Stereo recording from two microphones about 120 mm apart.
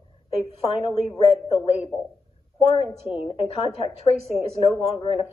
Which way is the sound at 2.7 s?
55° left (ahead or behind).